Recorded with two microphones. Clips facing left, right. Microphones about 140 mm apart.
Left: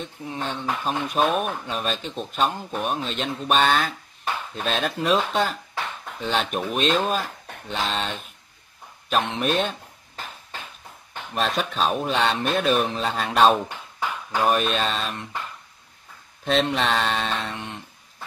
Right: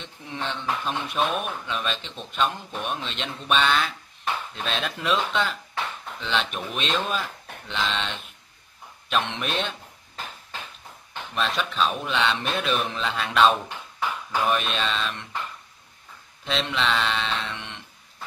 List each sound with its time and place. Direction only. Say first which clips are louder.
0.0 s speech: left 3 dB; 40° left (ahead or behind)
11.3 s speech: left 2 dB; 45° left (ahead or behind)
16.4 s speech: left 4 dB; 45° left (ahead or behind)